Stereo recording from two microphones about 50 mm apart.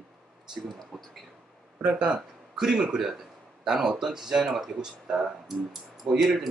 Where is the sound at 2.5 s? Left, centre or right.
Centre.